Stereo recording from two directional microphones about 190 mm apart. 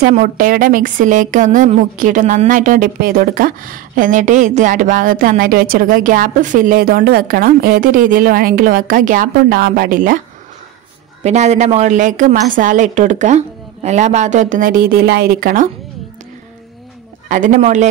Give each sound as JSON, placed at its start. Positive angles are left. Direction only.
{"t": 0.1, "sound": "speech", "side_deg": -45}
{"t": 11.2, "sound": "a woman's voice", "side_deg": -35}
{"t": 17.3, "sound": "a woman's voice", "side_deg": -40}